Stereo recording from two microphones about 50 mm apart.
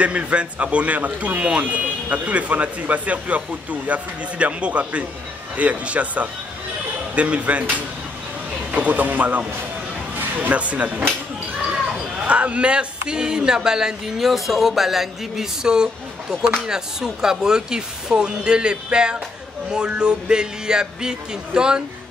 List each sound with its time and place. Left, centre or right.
0.0 s speech: right
8.7 s speech: right
12.3 s speech: right